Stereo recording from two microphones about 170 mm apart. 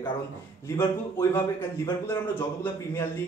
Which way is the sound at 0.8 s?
15° left (ahead or behind).